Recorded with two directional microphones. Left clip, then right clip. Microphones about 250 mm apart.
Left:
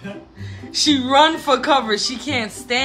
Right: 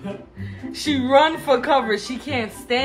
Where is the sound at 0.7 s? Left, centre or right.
Centre.